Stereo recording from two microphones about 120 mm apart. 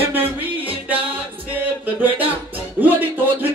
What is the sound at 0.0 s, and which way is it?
Music, 15° right (ahead or behind).